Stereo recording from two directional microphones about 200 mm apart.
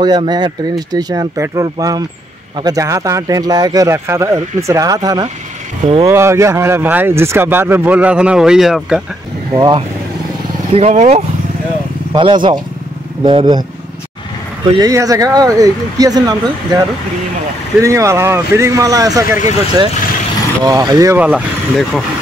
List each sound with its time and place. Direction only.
0.0 s speech: 20° right (ahead or behind); by 9.0 s centre (ahead or behind)
9.5 s speech: 20° right (ahead or behind)
10.7 s speech: 30° right (ahead or behind)
12.1 s speech: 25° right (ahead or behind)
14.7 s speech: 15° right (ahead or behind)
17.8 s speech: 15° right (ahead or behind)
21.3 s speech: centre (ahead or behind)